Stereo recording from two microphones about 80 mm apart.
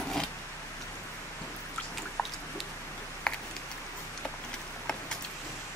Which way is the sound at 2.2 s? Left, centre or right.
Centre.